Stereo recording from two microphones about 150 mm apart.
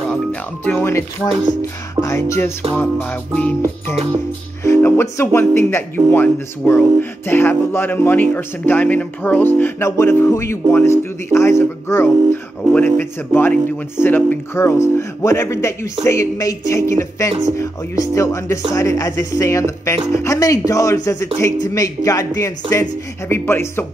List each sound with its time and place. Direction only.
0.1 s speech: 10° left (ahead or behind)
2.0 s music: 20° left (ahead or behind)
4.6 s speech: 15° left (ahead or behind)
5.1 s music: 15° left (ahead or behind)
17.6 s speech: 20° left (ahead or behind)